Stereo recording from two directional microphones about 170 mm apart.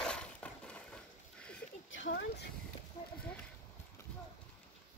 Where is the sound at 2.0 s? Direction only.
90° left.